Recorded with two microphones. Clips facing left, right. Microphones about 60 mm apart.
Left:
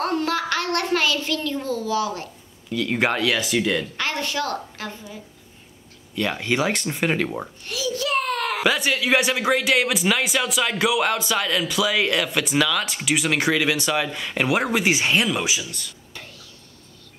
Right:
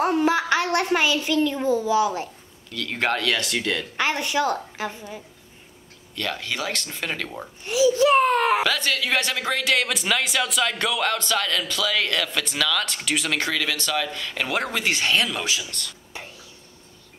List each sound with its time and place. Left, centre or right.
0.0 s a child's voice: centre
2.7 s speech: centre
3.9 s a woman's voice: centre
6.1 s speech: centre
7.6 s a sound: right
8.6 s speech: centre
16.1 s whispering: centre